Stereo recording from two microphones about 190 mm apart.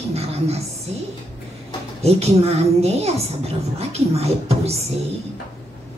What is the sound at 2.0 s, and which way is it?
A woman's voice, 35° right (ahead or behind).